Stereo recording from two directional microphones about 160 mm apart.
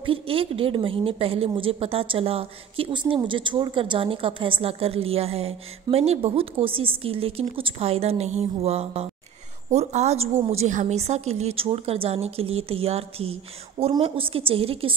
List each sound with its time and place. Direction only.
0.0 s a woman's voice: 35° right (ahead or behind)